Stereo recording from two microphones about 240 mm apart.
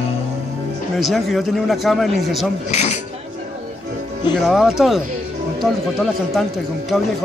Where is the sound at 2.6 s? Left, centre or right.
Left.